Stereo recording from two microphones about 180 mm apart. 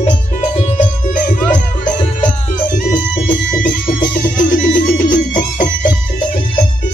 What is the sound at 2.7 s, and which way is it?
Music, 50° left (ahead or behind).